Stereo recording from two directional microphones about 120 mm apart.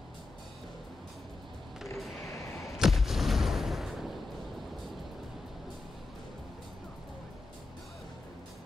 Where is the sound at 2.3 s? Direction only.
25° left (ahead or behind).